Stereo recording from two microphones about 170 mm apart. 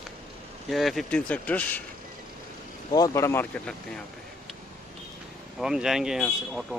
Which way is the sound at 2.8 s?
20° left (ahead or behind).